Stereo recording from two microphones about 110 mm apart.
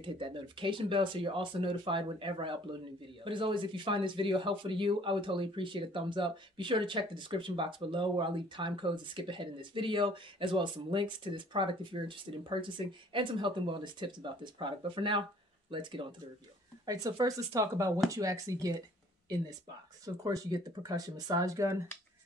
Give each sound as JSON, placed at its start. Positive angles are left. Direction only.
{"t": 0.0, "sound": "speech", "side_deg": -50}
{"t": 16.8, "sound": "speech", "side_deg": -35}
{"t": 20.2, "sound": "speech", "side_deg": -35}